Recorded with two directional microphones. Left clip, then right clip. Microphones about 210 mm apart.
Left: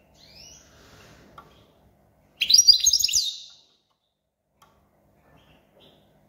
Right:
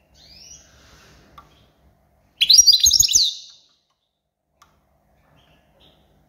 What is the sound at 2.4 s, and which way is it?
Bird, 30° right (ahead or behind).